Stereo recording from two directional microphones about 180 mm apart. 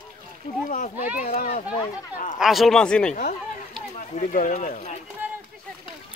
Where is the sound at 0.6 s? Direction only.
45° left (ahead or behind).